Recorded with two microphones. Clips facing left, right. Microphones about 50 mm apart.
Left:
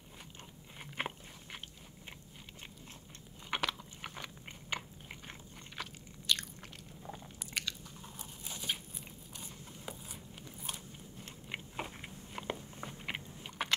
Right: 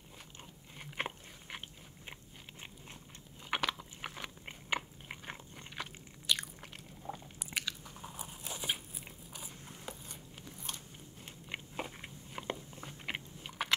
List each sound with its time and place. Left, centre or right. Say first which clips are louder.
0.7 s biting: even; centre
3.4 s biting: right 1 dB; centre; by 5.7 s right
5.8 s biting: even; centre
8.5 s crunch: right 1 dB; centre
9.8 s a sound: left 1 dB; centre
11.4 s biting: even; centre